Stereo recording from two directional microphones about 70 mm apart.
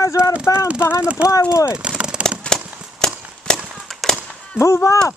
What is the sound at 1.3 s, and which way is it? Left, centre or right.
Speech, left.